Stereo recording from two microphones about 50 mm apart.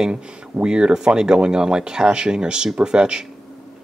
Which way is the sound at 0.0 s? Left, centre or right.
Centre.